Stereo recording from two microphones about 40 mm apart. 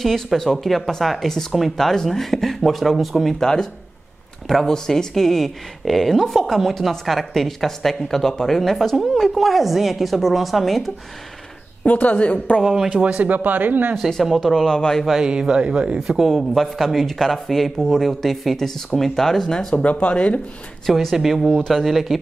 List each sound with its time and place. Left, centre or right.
0.0 s speech: centre
3.3 s a woman's voice: centre
4.5 s a woman's voice: centre
11.8 s speech: left
12.6 s speech: centre
12.9 s speech: right
14.2 s speech: centre
14.5 s a woman's voice: centre
15.2 s a man's voice: right
16.0 s speech: centre
16.3 s a woman's voice: centre
19.4 s a woman's voice: centre
19.7 s speech: left
21.1 s speech: centre